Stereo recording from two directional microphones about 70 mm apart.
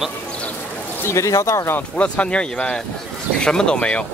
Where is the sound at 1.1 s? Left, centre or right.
Left.